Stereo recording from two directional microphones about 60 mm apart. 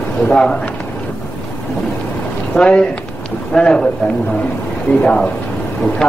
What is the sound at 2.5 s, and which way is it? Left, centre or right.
Speech, left.